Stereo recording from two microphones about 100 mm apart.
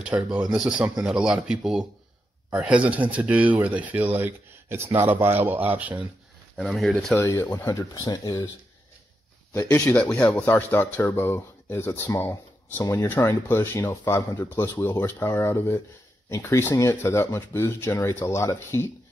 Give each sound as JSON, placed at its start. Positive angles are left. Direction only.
{"t": 0.0, "sound": "speech", "side_deg": -10}
{"t": 6.5, "sound": "speech", "side_deg": 0}
{"t": 7.3, "sound": "speech", "side_deg": 20}
{"t": 7.7, "sound": "speech", "side_deg": 35}
{"t": 9.5, "sound": "speech", "side_deg": 25}
{"t": 9.8, "sound": "speech", "side_deg": 15}
{"t": 10.2, "sound": "speech", "side_deg": 25}